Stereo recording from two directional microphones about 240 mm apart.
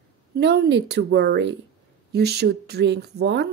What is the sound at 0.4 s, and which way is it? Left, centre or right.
Speech, right.